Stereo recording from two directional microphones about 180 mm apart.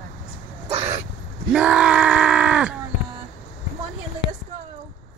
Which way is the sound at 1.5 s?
5° right (ahead or behind).